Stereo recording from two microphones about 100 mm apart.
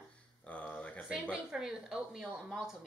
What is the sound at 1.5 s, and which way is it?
Speech, 5° right (ahead or behind).